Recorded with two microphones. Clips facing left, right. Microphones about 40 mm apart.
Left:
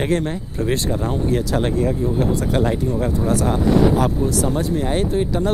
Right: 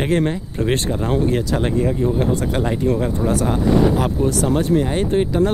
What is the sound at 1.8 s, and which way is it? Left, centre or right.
Speech, centre.